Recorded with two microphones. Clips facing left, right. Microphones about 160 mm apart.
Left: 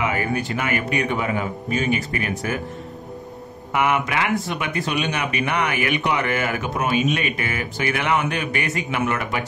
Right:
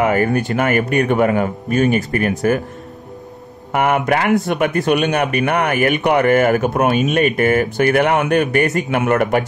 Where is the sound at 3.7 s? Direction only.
50° right (ahead or behind).